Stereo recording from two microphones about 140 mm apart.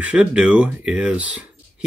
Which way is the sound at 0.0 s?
10° right (ahead or behind).